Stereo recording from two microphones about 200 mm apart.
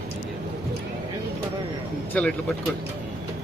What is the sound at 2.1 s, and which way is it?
Speech, 5° left (ahead or behind).